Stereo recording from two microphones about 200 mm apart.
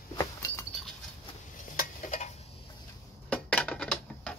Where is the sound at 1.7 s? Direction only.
35° left (ahead or behind).